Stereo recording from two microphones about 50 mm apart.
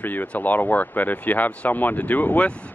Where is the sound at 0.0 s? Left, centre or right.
Left.